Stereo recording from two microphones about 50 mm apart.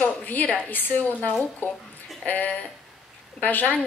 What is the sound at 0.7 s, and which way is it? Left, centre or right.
A woman's voice, left.